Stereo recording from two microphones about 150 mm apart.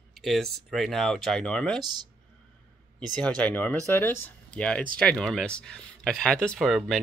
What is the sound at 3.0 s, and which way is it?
Speech, 5° left (ahead or behind).